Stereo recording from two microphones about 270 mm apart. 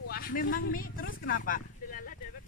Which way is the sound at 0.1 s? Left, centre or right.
Left.